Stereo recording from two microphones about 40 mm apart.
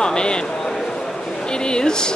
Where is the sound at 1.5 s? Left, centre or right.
Left.